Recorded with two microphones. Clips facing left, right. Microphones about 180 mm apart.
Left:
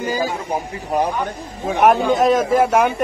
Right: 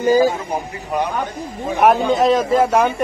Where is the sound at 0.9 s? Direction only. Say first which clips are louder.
Left 2 dB; 35° left (ahead or behind).